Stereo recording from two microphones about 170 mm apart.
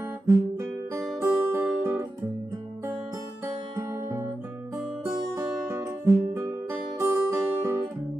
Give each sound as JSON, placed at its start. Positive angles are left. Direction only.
{"t": 1.2, "sound": "guitar", "side_deg": -15}
{"t": 3.7, "sound": "music", "side_deg": -20}
{"t": 5.7, "sound": "guitar", "side_deg": -15}